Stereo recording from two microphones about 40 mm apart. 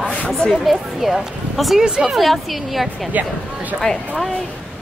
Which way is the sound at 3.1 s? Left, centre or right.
Right.